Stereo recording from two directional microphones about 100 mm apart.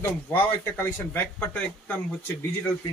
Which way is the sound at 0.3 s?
20° left (ahead or behind).